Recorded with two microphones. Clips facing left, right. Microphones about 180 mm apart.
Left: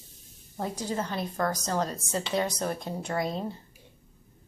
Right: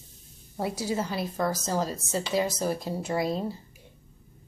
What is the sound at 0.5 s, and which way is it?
A woman's voice, 10° right (ahead or behind).